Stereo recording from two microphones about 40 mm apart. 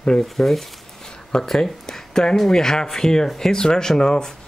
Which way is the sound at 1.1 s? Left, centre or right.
Centre.